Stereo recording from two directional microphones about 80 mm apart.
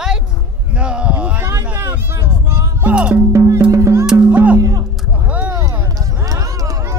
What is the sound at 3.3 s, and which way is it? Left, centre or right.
Music, right.